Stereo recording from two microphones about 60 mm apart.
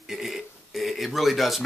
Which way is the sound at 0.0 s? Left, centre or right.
Centre.